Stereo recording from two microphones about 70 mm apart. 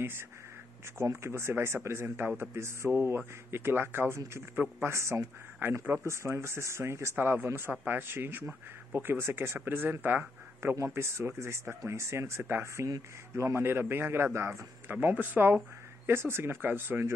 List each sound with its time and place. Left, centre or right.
0.9 s speech: right
5.1 s speech: right
6.0 s speech: right
7.2 s speech: right
10.8 s speech: right
12.8 s speech: right
14.9 s speech: right